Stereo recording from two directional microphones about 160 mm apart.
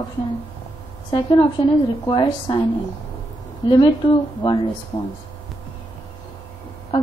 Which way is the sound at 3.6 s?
25° left (ahead or behind).